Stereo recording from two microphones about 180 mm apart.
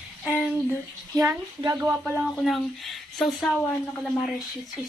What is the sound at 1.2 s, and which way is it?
Speech, 20° right (ahead or behind).